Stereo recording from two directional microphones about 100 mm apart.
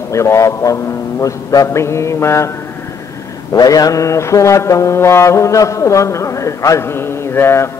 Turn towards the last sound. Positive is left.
turn(degrees=25)  # may be behind; listen again after turning